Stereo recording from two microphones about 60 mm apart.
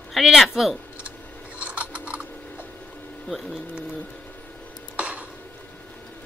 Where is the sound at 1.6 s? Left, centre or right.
Right.